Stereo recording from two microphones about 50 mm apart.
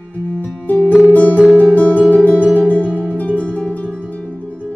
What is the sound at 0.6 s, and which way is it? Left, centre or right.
Music, left.